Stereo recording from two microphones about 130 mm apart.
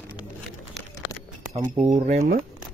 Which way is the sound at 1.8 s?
65° right (ahead or behind).